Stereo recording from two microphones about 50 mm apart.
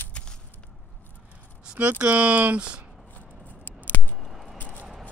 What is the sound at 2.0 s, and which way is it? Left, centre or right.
Speech, right.